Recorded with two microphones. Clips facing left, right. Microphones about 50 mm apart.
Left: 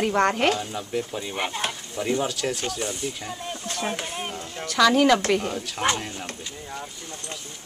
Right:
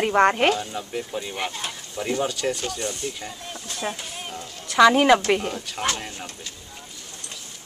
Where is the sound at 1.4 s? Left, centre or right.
Centre.